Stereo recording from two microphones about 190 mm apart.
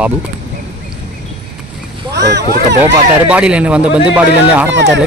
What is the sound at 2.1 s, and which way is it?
Boat, 60° right (ahead or behind).